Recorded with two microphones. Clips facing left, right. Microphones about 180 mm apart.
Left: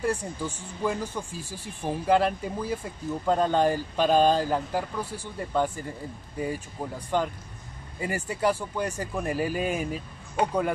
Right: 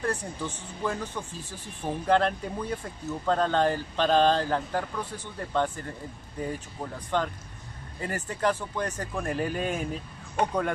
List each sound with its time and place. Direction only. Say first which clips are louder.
0.0 s speech: left 2 dB; 10° left (ahead or behind)